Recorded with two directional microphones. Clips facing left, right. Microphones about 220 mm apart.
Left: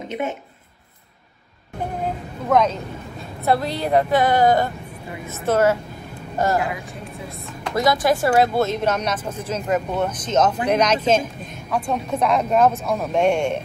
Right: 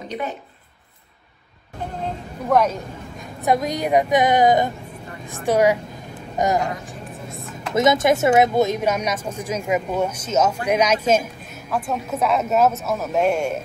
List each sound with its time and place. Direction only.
2.5 s speech: 10° right (ahead or behind)
7.7 s a woman's voice: 20° right (ahead or behind); by 13.6 s 5° right (ahead or behind)